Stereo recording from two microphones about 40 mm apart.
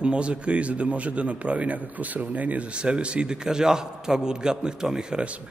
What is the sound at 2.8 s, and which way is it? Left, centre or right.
Speech, right.